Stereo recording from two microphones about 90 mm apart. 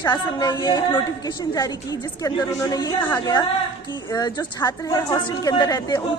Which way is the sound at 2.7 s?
50° left (ahead or behind).